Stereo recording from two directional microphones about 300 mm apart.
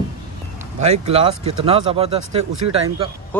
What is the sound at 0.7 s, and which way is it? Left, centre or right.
Speech, right.